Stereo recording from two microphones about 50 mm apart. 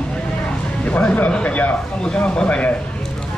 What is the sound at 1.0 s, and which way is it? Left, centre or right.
A man's voice, left.